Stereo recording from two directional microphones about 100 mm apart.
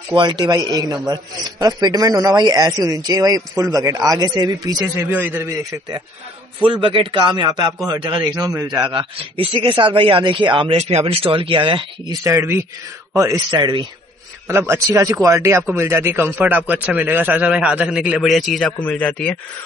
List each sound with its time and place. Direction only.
0.1 s a man's voice: 50° right (ahead or behind)
4.9 s speech: 20° right (ahead or behind)
6.6 s a man's voice: 60° right (ahead or behind); by 8.8 s 35° right (ahead or behind)
8.8 s speech: 55° right (ahead or behind)
12.1 s speech: 30° right (ahead or behind); by 13.8 s 50° right (ahead or behind)
14.5 s speech: 25° right (ahead or behind); by 18.7 s centre (ahead or behind)
18.7 s speech: 10° left (ahead or behind)